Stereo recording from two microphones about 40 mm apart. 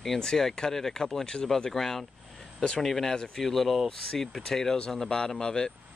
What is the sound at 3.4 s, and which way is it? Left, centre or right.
Speech, centre.